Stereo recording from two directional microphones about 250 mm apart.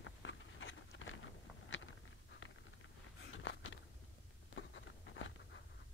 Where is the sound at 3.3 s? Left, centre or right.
Left.